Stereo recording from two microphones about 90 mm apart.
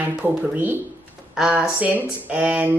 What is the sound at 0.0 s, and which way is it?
Speech, 20° right (ahead or behind).